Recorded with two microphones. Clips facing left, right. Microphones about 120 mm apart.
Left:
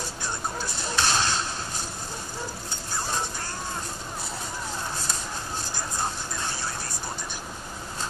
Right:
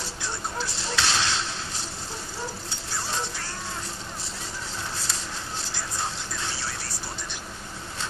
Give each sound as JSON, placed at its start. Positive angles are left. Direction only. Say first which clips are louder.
{"t": 0.7, "sound": "shuffle", "louder": "left 2 dB", "side_deg": 50}
{"t": 2.9, "sound": "music", "louder": "left 1 dB", "side_deg": 45}
{"t": 5.9, "sound": "music", "louder": "left 2 dB", "side_deg": 45}